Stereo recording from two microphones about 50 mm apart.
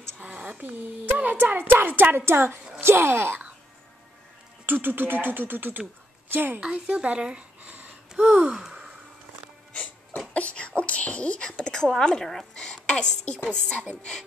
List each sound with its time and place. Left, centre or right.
0.2 s speech: right
4.6 s speech: right
6.6 s speech: centre
8.5 s sigh: centre
10.3 s a sound: left
10.8 s a woman's voice: left